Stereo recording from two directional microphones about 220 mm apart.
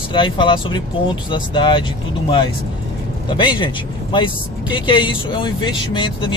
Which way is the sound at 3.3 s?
20° left (ahead or behind).